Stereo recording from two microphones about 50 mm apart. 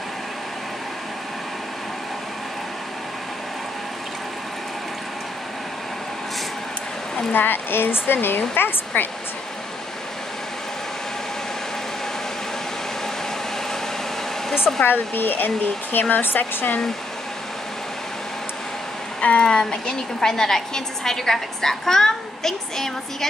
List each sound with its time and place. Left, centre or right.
7.3 s speech: left
14.8 s speech: left
19.2 s a woman's voice: left